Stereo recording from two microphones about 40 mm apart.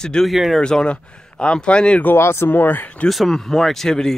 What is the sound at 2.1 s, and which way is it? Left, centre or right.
Speech, left.